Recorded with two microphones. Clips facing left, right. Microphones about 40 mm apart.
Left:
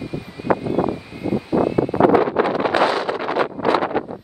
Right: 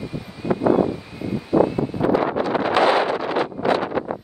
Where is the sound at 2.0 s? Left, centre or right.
Left.